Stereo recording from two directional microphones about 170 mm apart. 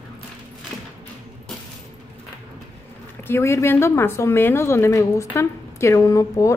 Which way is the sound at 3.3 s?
15° left (ahead or behind).